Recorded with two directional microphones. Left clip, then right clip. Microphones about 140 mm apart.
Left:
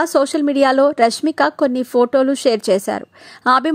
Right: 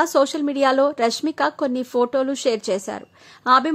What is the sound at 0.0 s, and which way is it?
Speech, 25° left (ahead or behind).